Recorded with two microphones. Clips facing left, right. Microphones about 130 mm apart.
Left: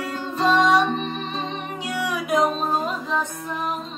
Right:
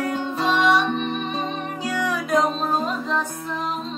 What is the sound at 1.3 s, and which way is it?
Music, 25° left (ahead or behind).